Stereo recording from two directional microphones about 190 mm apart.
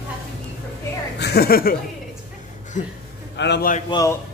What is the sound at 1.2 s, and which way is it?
Speech, 55° left (ahead or behind).